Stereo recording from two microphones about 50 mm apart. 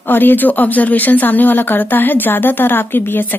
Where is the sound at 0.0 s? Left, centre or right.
Left.